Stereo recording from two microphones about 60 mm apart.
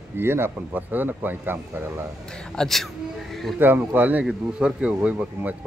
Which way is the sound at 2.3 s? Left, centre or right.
Centre.